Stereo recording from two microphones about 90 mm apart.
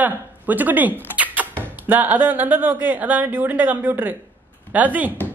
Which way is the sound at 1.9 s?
20° right (ahead or behind).